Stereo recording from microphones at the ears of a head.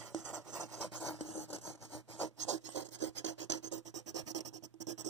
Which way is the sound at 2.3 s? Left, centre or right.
Right.